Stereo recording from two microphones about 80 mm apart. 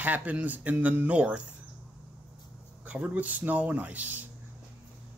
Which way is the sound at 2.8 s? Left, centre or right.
Centre.